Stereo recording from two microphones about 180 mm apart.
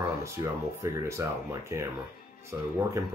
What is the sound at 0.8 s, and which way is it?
Speech, 15° right (ahead or behind).